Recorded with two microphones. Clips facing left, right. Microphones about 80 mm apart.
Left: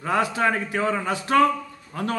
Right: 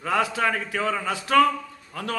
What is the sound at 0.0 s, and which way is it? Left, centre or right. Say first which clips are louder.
A man's voice: left 1 dB; left.